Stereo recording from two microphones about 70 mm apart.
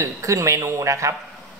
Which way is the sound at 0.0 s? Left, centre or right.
Right.